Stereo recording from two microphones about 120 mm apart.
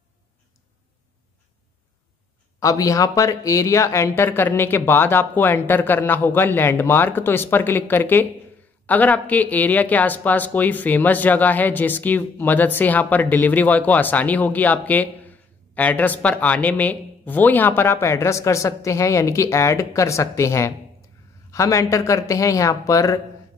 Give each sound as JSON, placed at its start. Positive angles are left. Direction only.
{"t": 2.6, "sound": "speech", "side_deg": 30}